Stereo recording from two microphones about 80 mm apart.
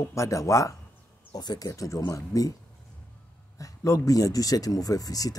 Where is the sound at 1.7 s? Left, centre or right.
Left.